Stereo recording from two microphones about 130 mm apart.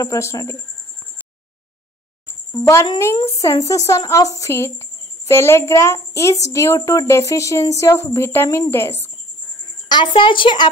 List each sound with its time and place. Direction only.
0.0 s a woman's voice: 25° left (ahead or behind)
2.6 s a woman's voice: 25° left (ahead or behind)
9.8 s a woman's voice: 35° left (ahead or behind)